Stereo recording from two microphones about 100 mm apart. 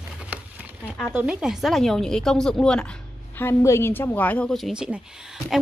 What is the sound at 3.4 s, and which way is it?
A woman's voice, 30° left (ahead or behind).